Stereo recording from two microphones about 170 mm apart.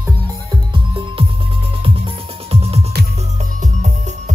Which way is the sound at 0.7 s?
30° right (ahead or behind).